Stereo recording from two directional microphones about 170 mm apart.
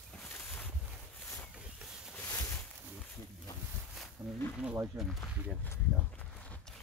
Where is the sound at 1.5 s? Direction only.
5° right (ahead or behind).